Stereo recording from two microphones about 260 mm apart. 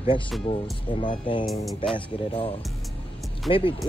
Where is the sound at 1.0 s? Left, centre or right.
Centre.